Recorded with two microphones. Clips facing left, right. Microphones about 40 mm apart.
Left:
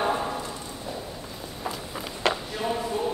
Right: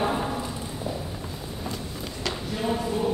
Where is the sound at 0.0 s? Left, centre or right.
Centre.